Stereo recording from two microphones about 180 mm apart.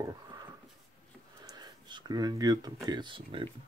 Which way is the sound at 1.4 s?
25° right (ahead or behind).